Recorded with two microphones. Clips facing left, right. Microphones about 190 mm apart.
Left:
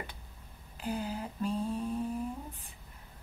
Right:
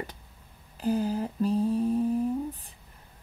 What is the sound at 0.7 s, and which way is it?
Mantra, 40° right (ahead or behind).